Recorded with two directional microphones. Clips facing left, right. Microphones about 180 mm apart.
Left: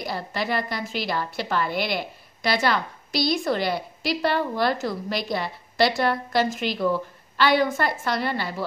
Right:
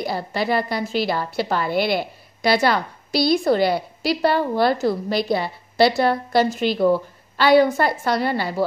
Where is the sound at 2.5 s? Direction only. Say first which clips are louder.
Right 3 dB; 35° right (ahead or behind).